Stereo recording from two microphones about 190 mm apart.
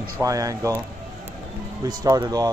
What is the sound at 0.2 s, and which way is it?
Speech, 15° right (ahead or behind).